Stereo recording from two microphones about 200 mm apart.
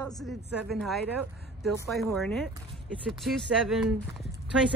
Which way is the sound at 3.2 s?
Centre (ahead or behind).